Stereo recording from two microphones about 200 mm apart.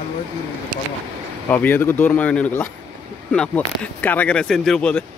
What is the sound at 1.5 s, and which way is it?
Speech, 10° left (ahead or behind).